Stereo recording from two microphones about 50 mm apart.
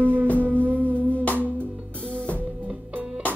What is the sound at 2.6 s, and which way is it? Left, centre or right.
Music, right.